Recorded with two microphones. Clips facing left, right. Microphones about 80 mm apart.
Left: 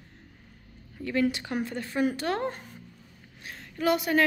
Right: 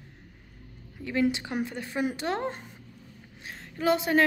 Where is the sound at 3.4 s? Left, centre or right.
Right.